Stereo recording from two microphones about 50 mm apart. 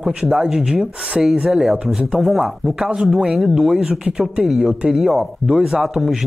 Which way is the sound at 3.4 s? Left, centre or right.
Centre.